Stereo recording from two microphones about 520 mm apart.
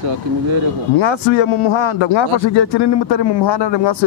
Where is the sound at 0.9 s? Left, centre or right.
Left.